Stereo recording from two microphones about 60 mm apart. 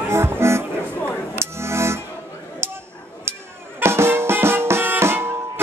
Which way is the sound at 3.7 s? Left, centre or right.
Right.